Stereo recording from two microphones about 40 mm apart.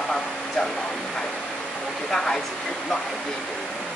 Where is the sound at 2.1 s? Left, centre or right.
Centre.